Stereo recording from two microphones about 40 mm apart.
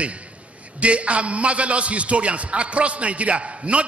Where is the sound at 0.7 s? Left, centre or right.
Right.